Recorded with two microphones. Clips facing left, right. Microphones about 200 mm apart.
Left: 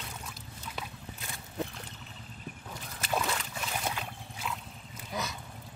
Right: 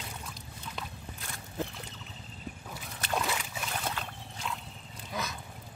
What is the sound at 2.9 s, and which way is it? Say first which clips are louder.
Boat: even; 5° left (ahead or behind).